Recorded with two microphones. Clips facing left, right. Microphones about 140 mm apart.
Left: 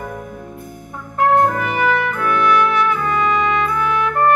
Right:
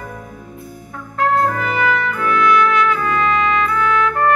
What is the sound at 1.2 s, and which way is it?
Trumpet, 20° left (ahead or behind).